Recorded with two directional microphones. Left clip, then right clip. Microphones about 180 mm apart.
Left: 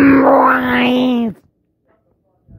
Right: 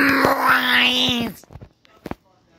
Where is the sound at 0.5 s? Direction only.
45° left (ahead or behind).